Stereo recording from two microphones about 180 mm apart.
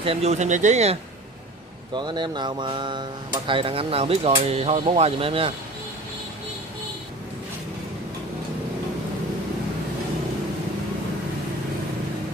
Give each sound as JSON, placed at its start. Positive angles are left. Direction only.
{"t": 0.0, "sound": "speech", "side_deg": -35}
{"t": 2.0, "sound": "speech", "side_deg": -25}